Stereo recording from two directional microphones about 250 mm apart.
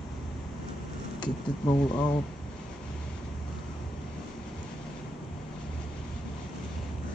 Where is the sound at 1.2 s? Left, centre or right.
Centre.